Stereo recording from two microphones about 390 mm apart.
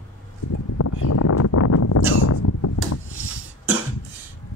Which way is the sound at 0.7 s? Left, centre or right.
Left.